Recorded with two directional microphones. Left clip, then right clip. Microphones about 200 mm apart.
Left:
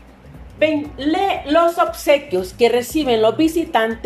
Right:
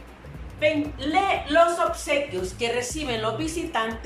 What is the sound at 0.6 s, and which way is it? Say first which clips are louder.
A woman's voice: left 6 dB; 45° left (ahead or behind).